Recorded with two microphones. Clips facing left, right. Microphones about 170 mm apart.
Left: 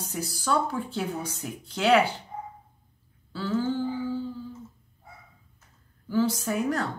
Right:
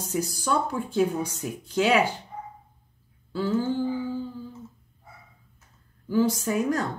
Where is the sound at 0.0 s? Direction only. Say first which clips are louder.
Right 4 dB; 15° right (ahead or behind).